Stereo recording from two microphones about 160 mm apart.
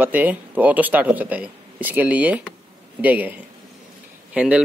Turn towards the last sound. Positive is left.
turn(degrees=-5)  # may be behind; listen again after turning